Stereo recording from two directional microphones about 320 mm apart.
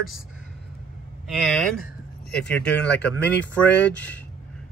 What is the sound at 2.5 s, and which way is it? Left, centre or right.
Speech, centre.